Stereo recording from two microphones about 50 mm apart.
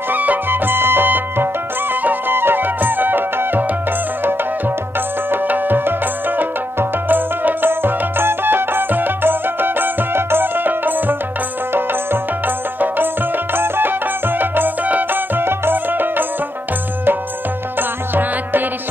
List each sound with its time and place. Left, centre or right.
0.1 s music: right
5.3 s music: right